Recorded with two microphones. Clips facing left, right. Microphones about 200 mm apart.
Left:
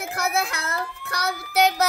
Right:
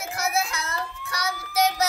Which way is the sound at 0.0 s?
60° left (ahead or behind).